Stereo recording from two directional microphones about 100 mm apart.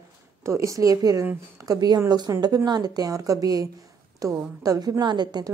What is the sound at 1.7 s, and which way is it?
A woman's voice, 40° right (ahead or behind).